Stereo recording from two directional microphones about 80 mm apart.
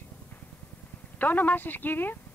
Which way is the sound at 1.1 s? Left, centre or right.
Left.